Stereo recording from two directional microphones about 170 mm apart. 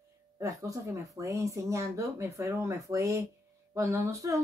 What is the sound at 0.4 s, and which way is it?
Speech, 20° right (ahead or behind).